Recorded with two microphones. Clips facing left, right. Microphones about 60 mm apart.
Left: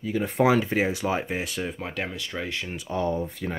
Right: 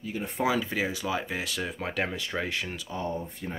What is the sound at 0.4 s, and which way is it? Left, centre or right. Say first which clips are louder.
Speech: left 6 dB; left.